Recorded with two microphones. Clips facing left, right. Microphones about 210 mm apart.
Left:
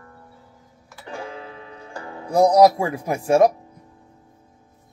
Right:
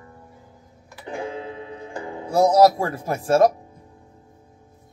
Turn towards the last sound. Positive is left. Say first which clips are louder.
# left 1 dB
turn(degrees=15)  # may be behind; listen again after turning